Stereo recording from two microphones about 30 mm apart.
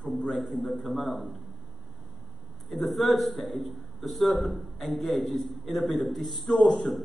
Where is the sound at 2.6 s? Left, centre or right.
Centre.